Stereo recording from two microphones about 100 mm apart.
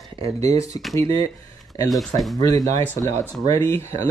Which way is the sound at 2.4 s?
35° left (ahead or behind).